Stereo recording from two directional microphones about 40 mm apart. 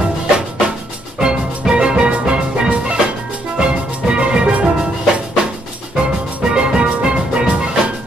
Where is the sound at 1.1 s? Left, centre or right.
Centre.